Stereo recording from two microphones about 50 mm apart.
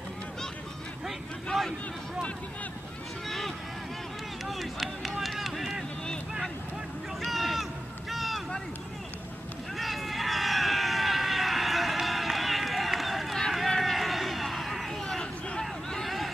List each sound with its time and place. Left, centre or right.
1.0 s vehicle: centre
3.3 s vehicle: centre
7.2 s a sound: centre
9.8 s run: centre
13.7 s a sound: centre
15.9 s vehicle: centre